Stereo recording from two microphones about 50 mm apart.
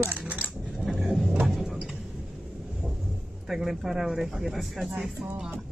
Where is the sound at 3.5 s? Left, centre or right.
Centre.